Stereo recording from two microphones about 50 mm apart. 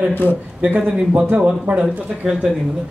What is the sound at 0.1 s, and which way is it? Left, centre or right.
Speech, left.